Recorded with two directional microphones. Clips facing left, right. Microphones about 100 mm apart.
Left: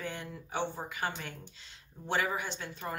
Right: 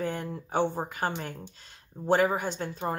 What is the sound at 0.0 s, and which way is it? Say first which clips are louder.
Speech: right 8 dB; 45° right (ahead or behind).